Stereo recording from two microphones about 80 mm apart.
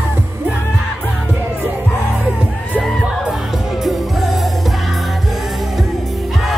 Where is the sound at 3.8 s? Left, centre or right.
Centre.